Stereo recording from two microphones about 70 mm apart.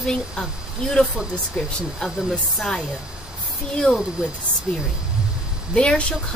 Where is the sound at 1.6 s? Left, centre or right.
Centre.